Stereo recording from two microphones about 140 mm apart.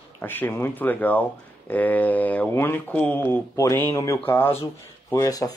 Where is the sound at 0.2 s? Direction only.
15° left (ahead or behind).